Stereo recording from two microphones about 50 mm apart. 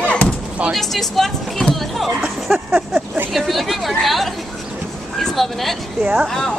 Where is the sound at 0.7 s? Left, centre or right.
Centre.